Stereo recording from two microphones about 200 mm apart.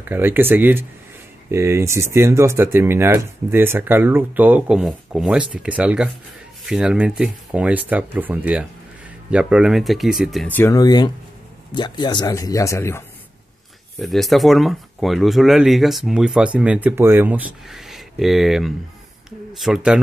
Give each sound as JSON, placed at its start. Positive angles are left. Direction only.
{"t": 0.1, "sound": "speech", "side_deg": -10}
{"t": 13.9, "sound": "speech", "side_deg": 0}